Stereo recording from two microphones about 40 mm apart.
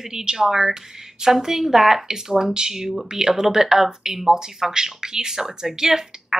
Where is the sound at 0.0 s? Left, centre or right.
Centre.